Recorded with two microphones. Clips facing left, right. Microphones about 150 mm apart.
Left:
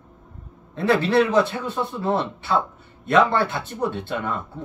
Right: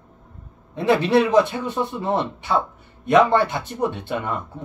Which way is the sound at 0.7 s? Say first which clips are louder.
Right 1 dB; 15° right (ahead or behind).